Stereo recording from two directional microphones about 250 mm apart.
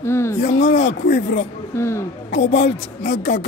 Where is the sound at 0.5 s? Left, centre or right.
Left.